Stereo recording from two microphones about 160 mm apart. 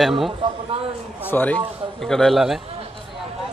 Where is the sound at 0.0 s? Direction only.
Centre (ahead or behind).